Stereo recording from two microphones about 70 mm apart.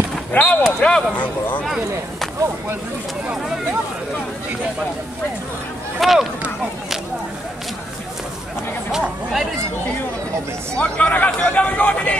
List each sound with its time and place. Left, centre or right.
0.3 s speech: left
5.9 s speech: centre
8.9 s a sound: centre
10.8 s speech: centre